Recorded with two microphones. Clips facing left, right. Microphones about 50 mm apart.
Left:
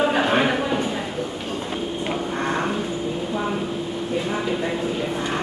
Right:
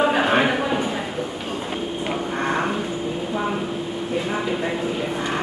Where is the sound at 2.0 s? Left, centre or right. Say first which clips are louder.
Right 1 dB; centre.